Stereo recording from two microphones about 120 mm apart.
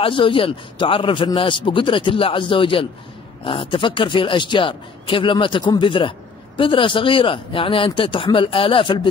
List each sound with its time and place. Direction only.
0.0 s a man's voice: 45° left (ahead or behind)